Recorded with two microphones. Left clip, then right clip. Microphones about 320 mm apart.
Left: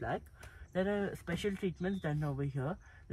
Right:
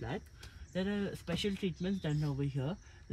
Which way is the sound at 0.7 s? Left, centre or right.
Centre.